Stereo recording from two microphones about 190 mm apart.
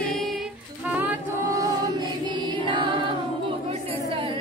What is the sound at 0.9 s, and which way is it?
Music, 10° right (ahead or behind).